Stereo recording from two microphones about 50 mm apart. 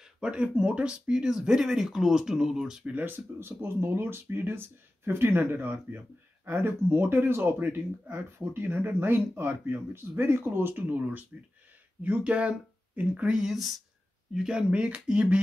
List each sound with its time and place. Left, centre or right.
0.0 s a sound: centre
0.6 s speech: right
2.8 s speech: right
3.1 s speech: right
13.3 s speech: centre
14.3 s speech: centre